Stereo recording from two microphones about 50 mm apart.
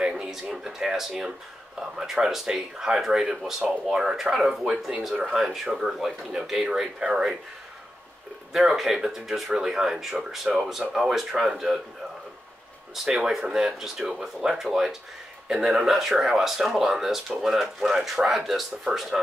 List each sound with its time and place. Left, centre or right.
0.2 s speech: centre
4.6 s speech: centre
8.5 s speech: centre
12.9 s speech: centre